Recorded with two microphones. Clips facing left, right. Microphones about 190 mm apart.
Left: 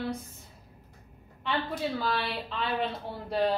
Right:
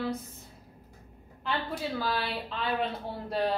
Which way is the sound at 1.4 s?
Centre (ahead or behind).